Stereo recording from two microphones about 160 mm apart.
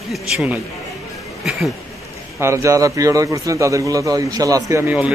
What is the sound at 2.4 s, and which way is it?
Speech, 20° right (ahead or behind).